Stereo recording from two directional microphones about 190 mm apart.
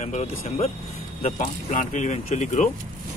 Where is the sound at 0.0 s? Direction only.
35° left (ahead or behind).